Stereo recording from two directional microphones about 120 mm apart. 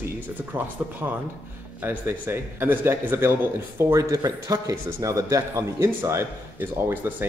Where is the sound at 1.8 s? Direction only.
20° right (ahead or behind).